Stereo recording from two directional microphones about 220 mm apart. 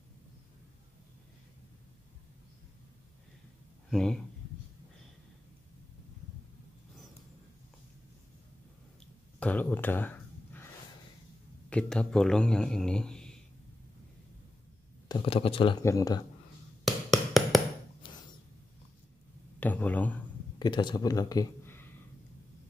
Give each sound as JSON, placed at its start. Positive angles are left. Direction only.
{"t": 3.9, "sound": "speech", "side_deg": 5}
{"t": 9.4, "sound": "speech", "side_deg": 5}
{"t": 11.7, "sound": "a man's voice", "side_deg": 5}
{"t": 15.0, "sound": "speech", "side_deg": 25}
{"t": 16.8, "sound": "a sound", "side_deg": 0}
{"t": 18.0, "sound": "a sound", "side_deg": 25}
{"t": 19.6, "sound": "speech", "side_deg": 5}
{"t": 20.5, "sound": "speech", "side_deg": 20}